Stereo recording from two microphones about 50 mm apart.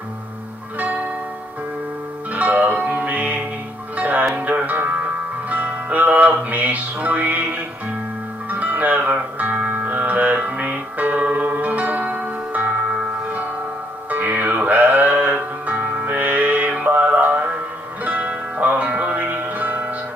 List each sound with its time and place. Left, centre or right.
0.7 s music: right
2.3 s music: right
14.1 s music: right